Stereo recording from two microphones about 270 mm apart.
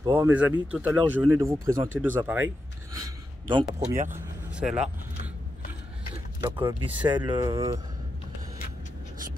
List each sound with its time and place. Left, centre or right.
0.0 s speech: centre
4.1 s speech: centre
6.4 s speech: centre